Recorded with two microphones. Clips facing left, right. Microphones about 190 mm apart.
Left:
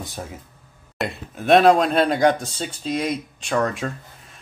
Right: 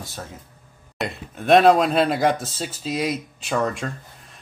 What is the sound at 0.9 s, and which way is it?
Speech, centre (ahead or behind).